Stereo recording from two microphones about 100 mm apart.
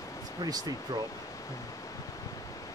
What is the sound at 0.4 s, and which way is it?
Speech, 40° right (ahead or behind).